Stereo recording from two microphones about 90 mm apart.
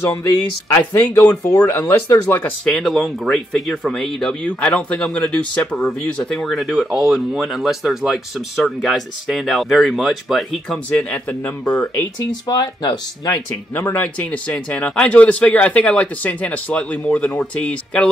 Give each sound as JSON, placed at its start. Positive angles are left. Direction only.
{"t": 0.1, "sound": "speech", "side_deg": 40}
{"t": 2.6, "sound": "speech", "side_deg": 5}
{"t": 11.0, "sound": "speech", "side_deg": 15}
{"t": 12.3, "sound": "speech", "side_deg": 50}
{"t": 13.3, "sound": "speech", "side_deg": 25}